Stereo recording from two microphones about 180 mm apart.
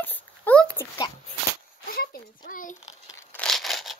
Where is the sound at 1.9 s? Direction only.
55° left (ahead or behind).